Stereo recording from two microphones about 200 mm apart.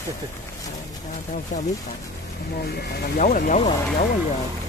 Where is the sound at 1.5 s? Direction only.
40° left (ahead or behind).